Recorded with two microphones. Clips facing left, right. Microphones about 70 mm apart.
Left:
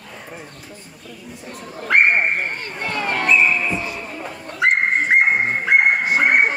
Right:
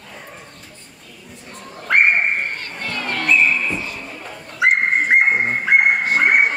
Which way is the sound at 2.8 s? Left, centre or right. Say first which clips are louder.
Left 3 dB; centre.